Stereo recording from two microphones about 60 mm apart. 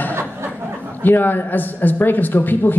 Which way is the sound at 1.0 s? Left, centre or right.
Left.